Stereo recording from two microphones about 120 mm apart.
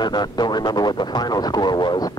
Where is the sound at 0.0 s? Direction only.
35° left (ahead or behind).